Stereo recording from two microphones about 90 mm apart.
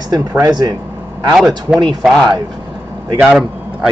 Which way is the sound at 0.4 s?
45° right (ahead or behind).